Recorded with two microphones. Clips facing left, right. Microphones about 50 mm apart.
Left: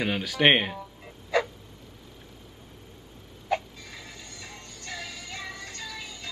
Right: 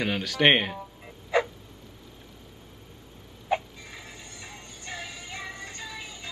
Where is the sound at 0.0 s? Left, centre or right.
Centre.